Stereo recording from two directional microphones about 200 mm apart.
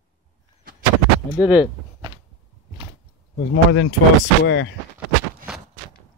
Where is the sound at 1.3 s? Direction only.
5° right (ahead or behind).